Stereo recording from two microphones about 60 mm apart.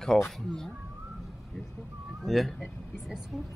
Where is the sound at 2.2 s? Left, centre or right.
Centre.